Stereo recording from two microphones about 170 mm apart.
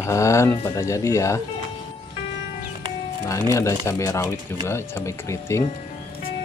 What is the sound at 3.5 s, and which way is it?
Speech, 15° left (ahead or behind).